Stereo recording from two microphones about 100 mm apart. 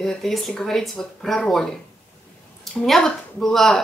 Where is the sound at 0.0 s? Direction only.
Centre (ahead or behind).